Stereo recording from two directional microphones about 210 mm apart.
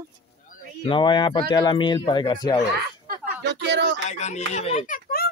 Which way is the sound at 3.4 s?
55° right (ahead or behind).